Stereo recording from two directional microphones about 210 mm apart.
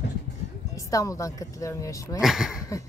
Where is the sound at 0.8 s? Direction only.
15° left (ahead or behind).